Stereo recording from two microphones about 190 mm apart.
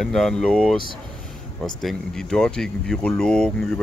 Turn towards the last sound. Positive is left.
turn(degrees=5)  # may be behind; listen again after turning